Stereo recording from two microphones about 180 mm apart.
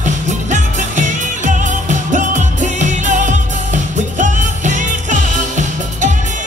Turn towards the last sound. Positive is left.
turn(degrees=-45)  # may be behind; listen again after turning